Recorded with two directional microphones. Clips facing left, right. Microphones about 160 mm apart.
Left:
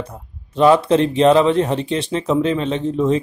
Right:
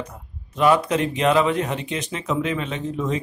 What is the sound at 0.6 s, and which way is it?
Speech, 30° left (ahead or behind).